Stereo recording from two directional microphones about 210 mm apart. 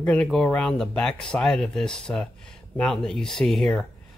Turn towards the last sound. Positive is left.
turn(degrees=0)  # may be behind; listen again after turning